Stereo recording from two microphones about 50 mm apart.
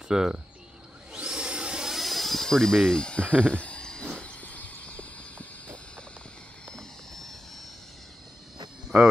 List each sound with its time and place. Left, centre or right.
0.1 s speech: centre
1.1 s vacuum cleaner: centre
2.0 s a sound: centre; by 3.3 s left
3.4 s speech: left
4.2 s a sound: left
6.7 s vehicle: centre
8.9 s cricket: centre